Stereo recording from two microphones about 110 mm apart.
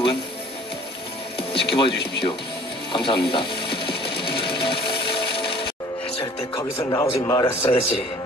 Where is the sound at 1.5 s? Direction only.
50° left (ahead or behind).